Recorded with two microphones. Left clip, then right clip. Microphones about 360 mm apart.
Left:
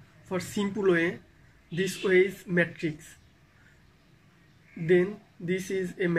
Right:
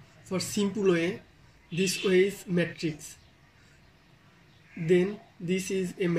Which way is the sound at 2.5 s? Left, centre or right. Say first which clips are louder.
Left 3 dB; left.